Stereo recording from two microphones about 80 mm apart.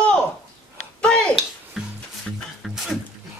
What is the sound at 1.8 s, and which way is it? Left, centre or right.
Music, centre.